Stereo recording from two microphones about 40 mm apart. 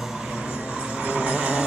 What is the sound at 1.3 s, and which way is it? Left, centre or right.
Vehicle, right.